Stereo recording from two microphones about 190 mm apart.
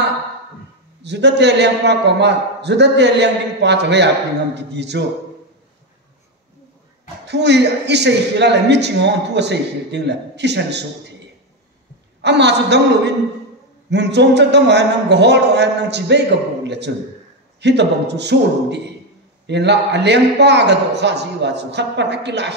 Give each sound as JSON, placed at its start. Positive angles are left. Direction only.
{"t": 1.0, "sound": "a man's voice", "side_deg": -65}
{"t": 7.2, "sound": "a man's voice", "side_deg": -65}
{"t": 12.2, "sound": "a man's voice", "side_deg": -65}